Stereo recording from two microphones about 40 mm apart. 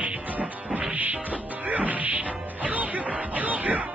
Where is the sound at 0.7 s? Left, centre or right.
Centre.